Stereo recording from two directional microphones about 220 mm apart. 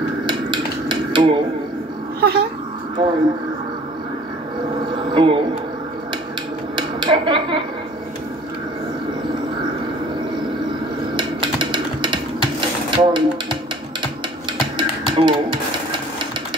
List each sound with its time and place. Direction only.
0.3 s dishes: 20° right (ahead or behind)
2.1 s speech: 45° right (ahead or behind)
3.0 s speech: 20° right (ahead or behind)
5.1 s speech: 20° right (ahead or behind)
6.7 s dishes: 20° right (ahead or behind)
11.1 s a sound: 20° right (ahead or behind)
14.8 s music: 20° right (ahead or behind)